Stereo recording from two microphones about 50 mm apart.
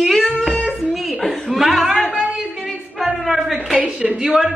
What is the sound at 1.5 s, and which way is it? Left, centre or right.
Speech, centre.